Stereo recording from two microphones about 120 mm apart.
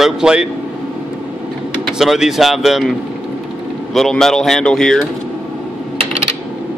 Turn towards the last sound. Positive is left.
turn(degrees=5)  # may be behind; listen again after turning